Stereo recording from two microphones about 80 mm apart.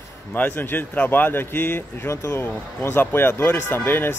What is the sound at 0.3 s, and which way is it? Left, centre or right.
Speech, left.